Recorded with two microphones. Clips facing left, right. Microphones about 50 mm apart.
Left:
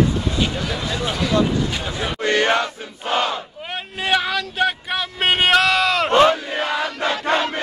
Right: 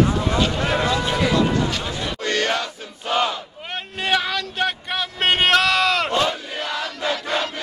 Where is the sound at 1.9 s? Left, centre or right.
Left.